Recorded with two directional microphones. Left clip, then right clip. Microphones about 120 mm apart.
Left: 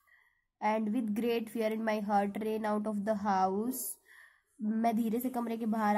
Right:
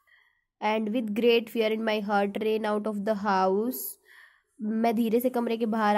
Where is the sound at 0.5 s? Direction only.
30° right (ahead or behind).